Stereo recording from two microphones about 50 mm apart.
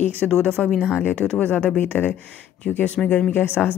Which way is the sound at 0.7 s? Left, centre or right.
Centre.